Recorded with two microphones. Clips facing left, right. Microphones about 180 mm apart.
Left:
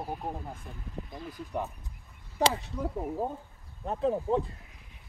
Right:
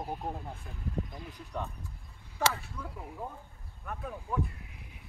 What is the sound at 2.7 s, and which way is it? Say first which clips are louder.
A man's voice: left 10 dB; 35° left (ahead or behind).